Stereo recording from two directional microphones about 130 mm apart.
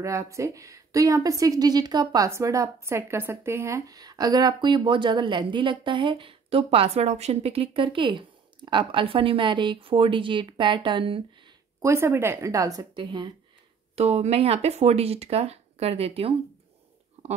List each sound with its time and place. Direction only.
0.0 s a woman's voice: 25° right (ahead or behind); by 11.2 s 40° right (ahead or behind)
11.8 s a woman's voice: 20° right (ahead or behind); by 13.3 s 35° right (ahead or behind)
13.9 s speech: 55° right (ahead or behind)